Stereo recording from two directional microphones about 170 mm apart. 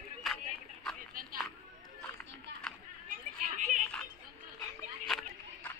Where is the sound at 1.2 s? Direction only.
55° right (ahead or behind).